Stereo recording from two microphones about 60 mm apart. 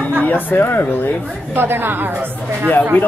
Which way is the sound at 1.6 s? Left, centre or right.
Right.